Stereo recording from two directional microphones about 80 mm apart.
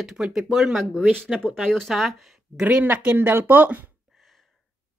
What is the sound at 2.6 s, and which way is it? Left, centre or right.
Speech, centre.